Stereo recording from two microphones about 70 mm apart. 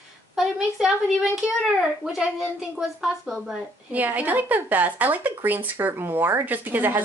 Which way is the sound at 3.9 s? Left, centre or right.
Right.